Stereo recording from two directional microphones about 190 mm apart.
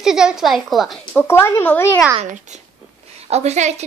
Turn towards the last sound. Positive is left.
turn(degrees=-35)  # may be behind; listen again after turning